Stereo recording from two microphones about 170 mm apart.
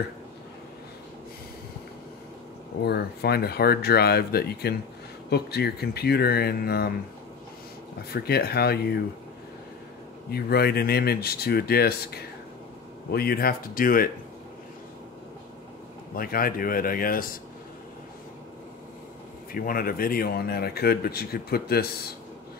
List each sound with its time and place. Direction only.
2.8 s speech: 70° left (ahead or behind)
8.1 s speech: 65° left (ahead or behind)
10.3 s speech: 65° left (ahead or behind)
16.2 s speech: 60° left (ahead or behind)
19.5 s speech: 60° left (ahead or behind)